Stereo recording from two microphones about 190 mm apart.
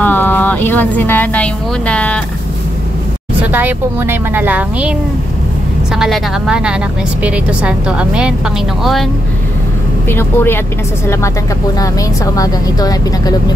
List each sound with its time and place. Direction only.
0.0 s speech: 10° left (ahead or behind)
3.5 s a woman's voice: 10° right (ahead or behind)
5.9 s a woman's voice: centre (ahead or behind)
10.0 s speech: 10° left (ahead or behind)
12.4 s speech: 20° left (ahead or behind)